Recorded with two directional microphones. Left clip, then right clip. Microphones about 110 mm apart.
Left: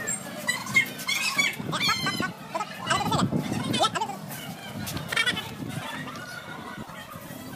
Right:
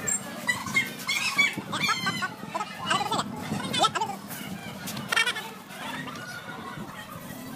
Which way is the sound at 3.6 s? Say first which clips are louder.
Right 1 dB; centre (ahead or behind).